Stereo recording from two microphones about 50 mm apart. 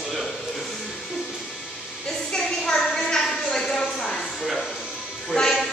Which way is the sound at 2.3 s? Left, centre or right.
Centre.